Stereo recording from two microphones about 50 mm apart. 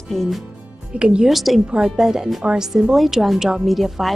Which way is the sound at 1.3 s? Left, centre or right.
Centre.